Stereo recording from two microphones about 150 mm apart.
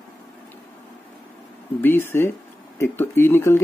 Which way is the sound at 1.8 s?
15° left (ahead or behind).